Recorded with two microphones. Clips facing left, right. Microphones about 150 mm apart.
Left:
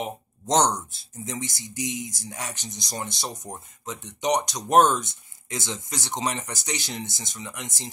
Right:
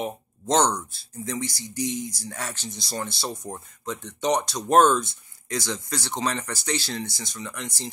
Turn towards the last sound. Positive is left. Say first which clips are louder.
# right 2 dB
turn(degrees=20)  # may be behind; listen again after turning